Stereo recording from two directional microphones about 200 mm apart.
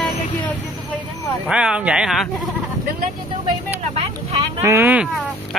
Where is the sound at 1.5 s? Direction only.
5° right (ahead or behind).